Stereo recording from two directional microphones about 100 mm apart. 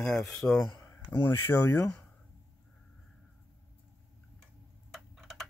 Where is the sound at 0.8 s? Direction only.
20° left (ahead or behind).